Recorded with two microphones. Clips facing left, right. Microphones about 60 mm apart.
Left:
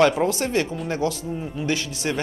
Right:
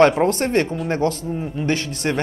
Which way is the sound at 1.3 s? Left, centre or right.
Right.